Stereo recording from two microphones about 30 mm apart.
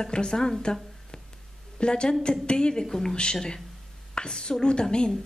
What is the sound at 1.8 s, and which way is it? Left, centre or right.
A woman's voice, left.